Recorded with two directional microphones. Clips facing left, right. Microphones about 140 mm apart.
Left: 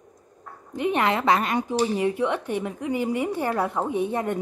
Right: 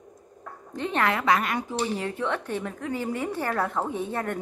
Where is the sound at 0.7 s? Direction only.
15° left (ahead or behind).